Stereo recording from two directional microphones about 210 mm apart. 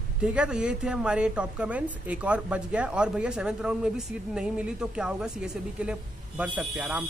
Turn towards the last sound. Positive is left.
turn(degrees=-5)  # may be behind; listen again after turning